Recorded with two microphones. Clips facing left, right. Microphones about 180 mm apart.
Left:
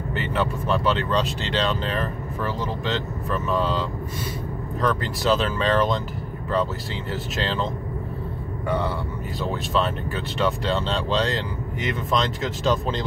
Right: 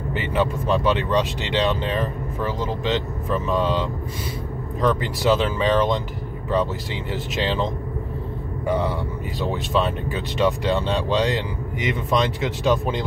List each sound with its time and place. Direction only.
0.1 s speech: 15° right (ahead or behind)
4.8 s speech: 15° right (ahead or behind)
9.4 s speech: 15° right (ahead or behind)